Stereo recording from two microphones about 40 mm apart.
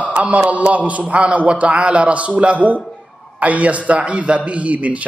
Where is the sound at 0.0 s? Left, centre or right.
Right.